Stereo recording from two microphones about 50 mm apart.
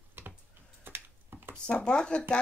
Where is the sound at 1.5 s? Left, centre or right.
Centre.